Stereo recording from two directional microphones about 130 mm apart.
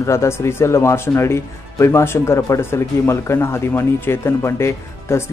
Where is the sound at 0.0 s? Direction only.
20° left (ahead or behind).